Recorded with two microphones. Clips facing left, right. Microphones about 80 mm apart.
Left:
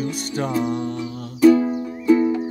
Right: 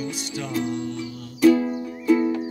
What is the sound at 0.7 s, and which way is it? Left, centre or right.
Music, left.